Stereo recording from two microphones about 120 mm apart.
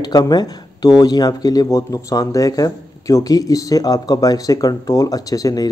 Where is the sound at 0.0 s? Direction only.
35° left (ahead or behind).